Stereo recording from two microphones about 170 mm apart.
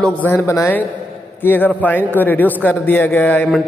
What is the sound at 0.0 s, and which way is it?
A man's voice, 10° left (ahead or behind).